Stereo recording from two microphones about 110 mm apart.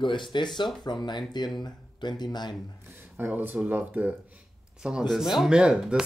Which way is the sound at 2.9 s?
20° right (ahead or behind).